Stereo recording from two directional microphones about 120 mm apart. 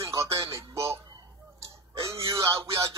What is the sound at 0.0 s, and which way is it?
Music, 25° right (ahead or behind).